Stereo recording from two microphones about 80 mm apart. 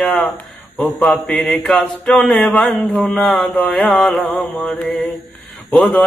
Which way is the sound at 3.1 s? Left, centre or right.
Centre.